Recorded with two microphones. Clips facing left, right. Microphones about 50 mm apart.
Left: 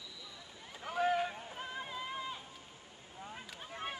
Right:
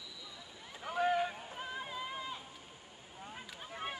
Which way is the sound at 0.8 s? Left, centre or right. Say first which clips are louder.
Even; centre.